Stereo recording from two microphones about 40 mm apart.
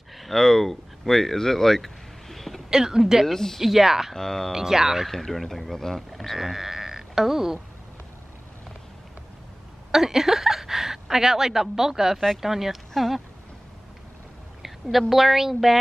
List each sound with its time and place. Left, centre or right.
0.2 s speech: centre
2.7 s speech: centre
3.3 s speech: centre
3.6 s speech: centre
4.1 s speech: centre
4.5 s speech: centre
5.0 s a man's voice: centre
6.3 s speech: centre
9.8 s a sound: centre
12.4 s speech: centre
14.6 s a woman's voice: centre